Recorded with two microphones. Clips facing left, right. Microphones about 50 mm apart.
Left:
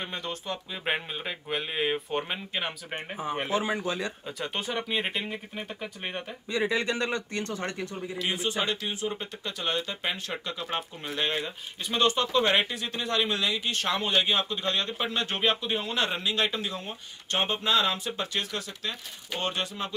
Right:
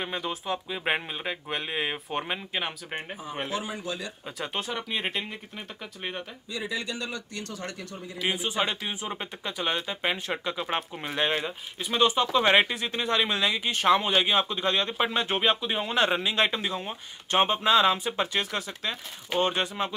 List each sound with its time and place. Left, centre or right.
0.0 s speech: centre
3.4 s speech: left
4.4 s speech: centre
6.5 s speech: left
8.2 s speech: centre
12.4 s speech: right